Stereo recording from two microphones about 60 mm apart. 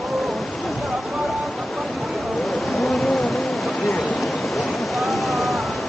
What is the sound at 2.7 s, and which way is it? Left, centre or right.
Insect, centre.